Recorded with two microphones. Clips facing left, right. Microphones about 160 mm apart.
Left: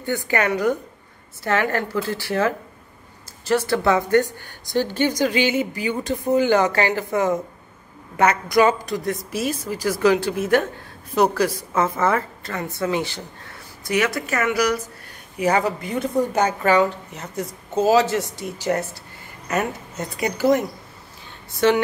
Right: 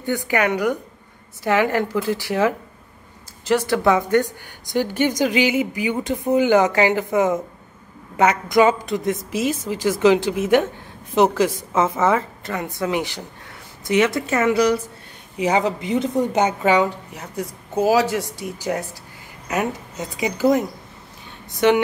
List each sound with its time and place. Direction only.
0.0 s a woman's voice: 15° right (ahead or behind)
21.5 s speech: 15° right (ahead or behind)